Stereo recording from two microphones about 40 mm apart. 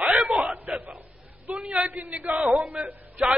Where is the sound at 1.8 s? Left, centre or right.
Right.